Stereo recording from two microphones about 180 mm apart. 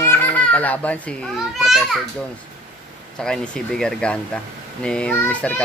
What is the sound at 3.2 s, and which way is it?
Speech, 5° left (ahead or behind).